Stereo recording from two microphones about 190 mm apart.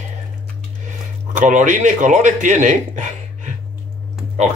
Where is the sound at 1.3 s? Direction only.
40° right (ahead or behind).